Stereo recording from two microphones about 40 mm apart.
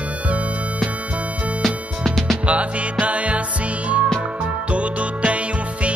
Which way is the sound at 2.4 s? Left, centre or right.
Right.